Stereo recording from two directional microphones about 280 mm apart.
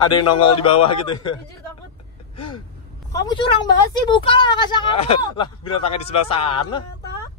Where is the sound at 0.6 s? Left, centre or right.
Centre.